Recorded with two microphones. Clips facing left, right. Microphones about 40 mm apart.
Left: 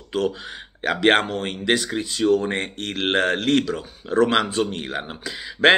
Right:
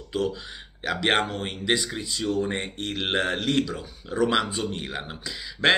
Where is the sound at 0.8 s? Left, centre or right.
Centre.